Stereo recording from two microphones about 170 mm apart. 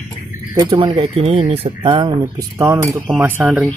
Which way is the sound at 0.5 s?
25° right (ahead or behind).